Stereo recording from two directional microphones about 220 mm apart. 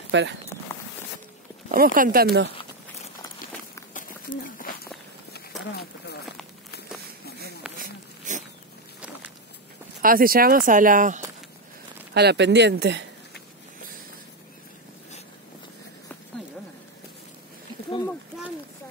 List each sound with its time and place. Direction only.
0.1 s speech: 55° right (ahead or behind)
1.7 s speech: 40° right (ahead or behind)
2.5 s walk: 25° left (ahead or behind)
3.9 s a sound: 40° left (ahead or behind)
7.2 s a sound: 45° left (ahead or behind)
10.0 s speech: 40° right (ahead or behind)
12.1 s speech: 50° right (ahead or behind)